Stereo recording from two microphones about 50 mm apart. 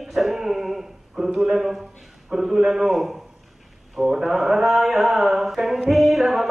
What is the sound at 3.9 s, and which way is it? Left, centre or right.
Mantra, centre.